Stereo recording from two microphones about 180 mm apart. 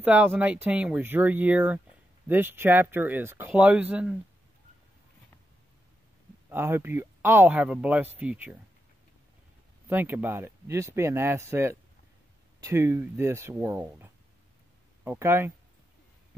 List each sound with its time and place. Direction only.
0.0 s speech: 10° right (ahead or behind)
6.5 s speech: 10° right (ahead or behind)
9.8 s speech: 10° right (ahead or behind)